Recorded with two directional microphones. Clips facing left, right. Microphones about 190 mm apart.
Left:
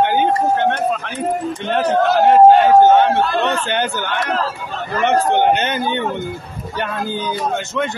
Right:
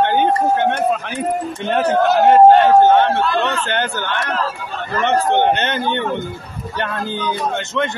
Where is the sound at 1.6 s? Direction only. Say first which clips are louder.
Right 1 dB; 5° right (ahead or behind).